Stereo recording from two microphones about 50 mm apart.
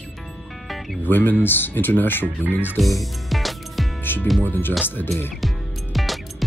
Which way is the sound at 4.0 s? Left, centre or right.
Left.